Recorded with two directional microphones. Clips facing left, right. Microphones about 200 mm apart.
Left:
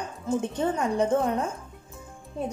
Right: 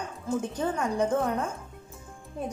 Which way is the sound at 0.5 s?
25° left (ahead or behind).